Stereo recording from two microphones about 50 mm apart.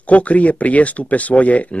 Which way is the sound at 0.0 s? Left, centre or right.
Left.